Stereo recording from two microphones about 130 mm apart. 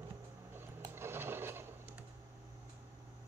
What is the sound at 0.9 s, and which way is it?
Sewing machine, 20° right (ahead or behind).